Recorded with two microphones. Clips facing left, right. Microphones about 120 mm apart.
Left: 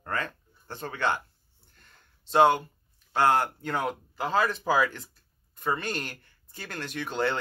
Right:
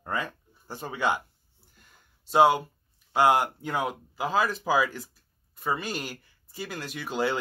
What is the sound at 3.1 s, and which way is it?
Speech, 10° right (ahead or behind).